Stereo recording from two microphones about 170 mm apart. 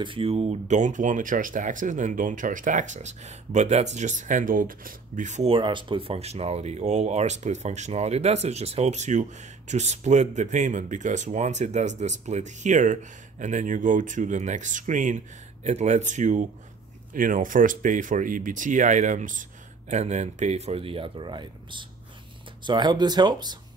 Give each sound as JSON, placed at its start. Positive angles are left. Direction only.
{"t": 0.0, "sound": "speech", "side_deg": -30}